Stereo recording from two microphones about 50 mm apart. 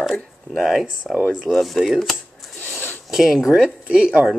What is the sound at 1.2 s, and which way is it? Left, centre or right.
Speech, centre.